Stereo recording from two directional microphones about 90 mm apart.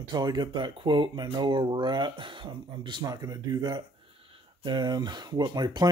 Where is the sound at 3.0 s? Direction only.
45° right (ahead or behind).